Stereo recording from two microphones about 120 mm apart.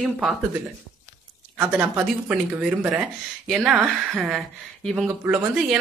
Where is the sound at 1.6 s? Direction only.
15° right (ahead or behind).